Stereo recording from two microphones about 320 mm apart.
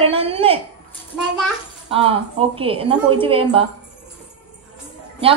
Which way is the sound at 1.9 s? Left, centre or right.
Centre.